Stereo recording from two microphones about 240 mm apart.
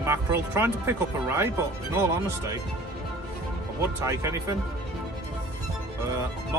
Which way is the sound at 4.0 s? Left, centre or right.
Centre.